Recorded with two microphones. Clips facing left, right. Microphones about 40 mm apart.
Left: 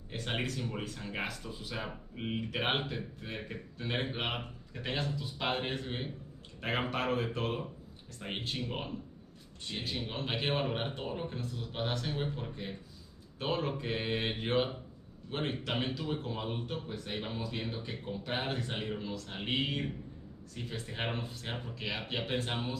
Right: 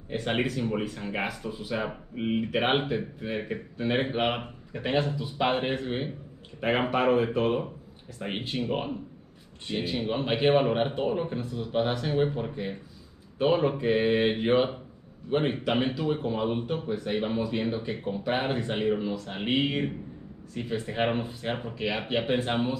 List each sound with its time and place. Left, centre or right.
0.1 s speech: centre